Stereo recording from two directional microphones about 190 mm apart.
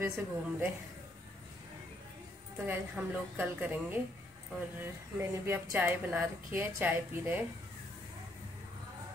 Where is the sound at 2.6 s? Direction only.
10° right (ahead or behind).